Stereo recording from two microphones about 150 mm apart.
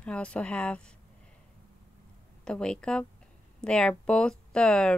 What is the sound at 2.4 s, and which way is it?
Speech, 5° left (ahead or behind).